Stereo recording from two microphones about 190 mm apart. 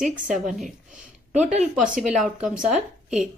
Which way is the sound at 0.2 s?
45° right (ahead or behind).